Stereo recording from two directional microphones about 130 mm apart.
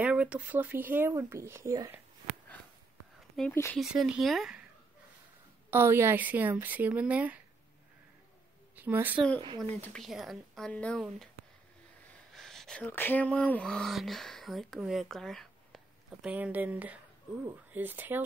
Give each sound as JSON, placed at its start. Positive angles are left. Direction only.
{"t": 0.0, "sound": "speech", "side_deg": -10}
{"t": 3.4, "sound": "speech", "side_deg": 0}
{"t": 5.7, "sound": "speech", "side_deg": -20}
{"t": 8.7, "sound": "a woman's voice", "side_deg": -15}
{"t": 9.9, "sound": "speech", "side_deg": 0}
{"t": 12.3, "sound": "speech", "side_deg": 5}
{"t": 16.3, "sound": "speech", "side_deg": -10}